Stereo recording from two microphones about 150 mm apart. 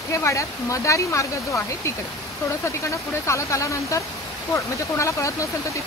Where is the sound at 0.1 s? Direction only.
20° left (ahead or behind).